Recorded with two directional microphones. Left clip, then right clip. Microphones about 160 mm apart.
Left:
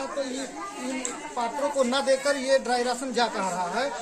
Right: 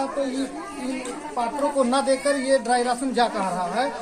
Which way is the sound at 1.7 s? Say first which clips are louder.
Right 2 dB; 15° left (ahead or behind).